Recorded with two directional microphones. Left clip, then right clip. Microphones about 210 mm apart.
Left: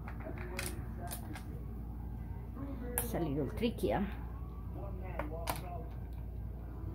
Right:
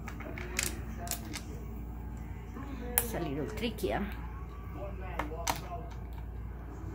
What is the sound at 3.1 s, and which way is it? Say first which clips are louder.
Speech: right 1 dB; 25° left (ahead or behind).